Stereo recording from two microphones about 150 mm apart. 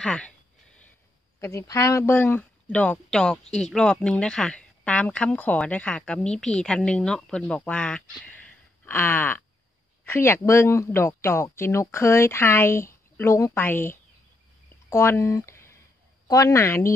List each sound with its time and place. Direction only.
0.0 s speech: 5° left (ahead or behind)
1.4 s a woman's voice: 20° left (ahead or behind)